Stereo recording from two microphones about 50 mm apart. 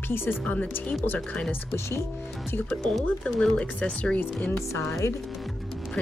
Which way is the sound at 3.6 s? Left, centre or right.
Left.